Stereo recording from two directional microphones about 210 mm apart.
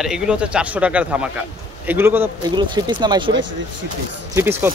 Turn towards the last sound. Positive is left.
turn(degrees=-10)  # may be behind; listen again after turning